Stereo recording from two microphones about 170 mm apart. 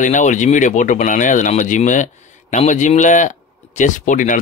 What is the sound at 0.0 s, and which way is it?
A man's voice, 45° left (ahead or behind).